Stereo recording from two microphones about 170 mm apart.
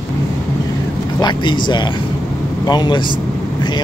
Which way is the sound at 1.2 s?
25° left (ahead or behind).